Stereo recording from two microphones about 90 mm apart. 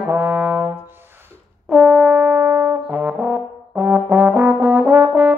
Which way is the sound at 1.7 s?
10° right (ahead or behind).